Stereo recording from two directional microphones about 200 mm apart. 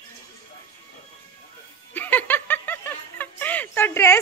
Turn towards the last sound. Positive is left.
turn(degrees=10)  # may be behind; listen again after turning